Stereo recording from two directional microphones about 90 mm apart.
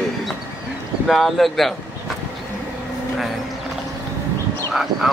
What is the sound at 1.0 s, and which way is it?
Speech, centre (ahead or behind).